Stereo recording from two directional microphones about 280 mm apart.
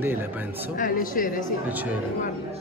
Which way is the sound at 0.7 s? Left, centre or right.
Left.